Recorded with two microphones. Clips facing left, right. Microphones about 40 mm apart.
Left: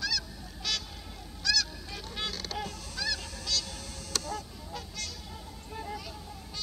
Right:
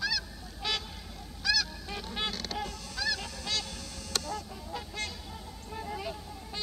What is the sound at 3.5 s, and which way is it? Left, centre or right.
Goose, right.